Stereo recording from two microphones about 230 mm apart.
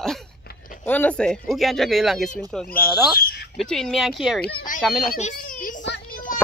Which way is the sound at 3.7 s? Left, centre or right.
Centre.